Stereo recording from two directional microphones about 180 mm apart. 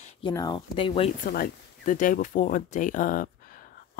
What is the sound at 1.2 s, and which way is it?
Speech, 50° left (ahead or behind).